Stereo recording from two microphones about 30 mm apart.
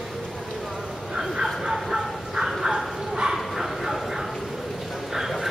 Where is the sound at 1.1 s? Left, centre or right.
Centre.